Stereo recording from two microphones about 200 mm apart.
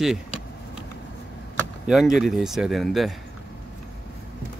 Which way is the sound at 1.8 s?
Centre (ahead or behind).